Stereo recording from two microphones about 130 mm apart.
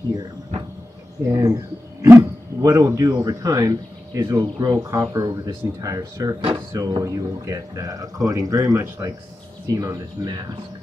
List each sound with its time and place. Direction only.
1.2 s speech: 25° right (ahead or behind)